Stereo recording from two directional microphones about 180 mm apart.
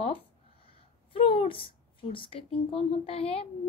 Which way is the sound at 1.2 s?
30° left (ahead or behind).